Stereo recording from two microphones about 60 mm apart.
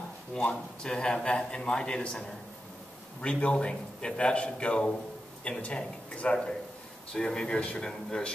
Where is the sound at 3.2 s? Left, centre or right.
Centre.